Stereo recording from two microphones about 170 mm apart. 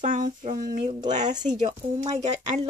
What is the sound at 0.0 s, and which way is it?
Speech, 50° right (ahead or behind).